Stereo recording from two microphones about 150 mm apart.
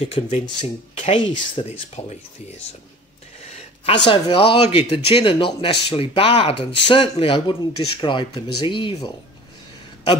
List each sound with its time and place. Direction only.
0.0 s speech: 40° left (ahead or behind)
3.4 s speech: 45° left (ahead or behind)